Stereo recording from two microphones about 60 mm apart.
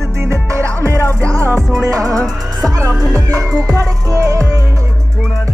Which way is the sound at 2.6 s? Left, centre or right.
Right.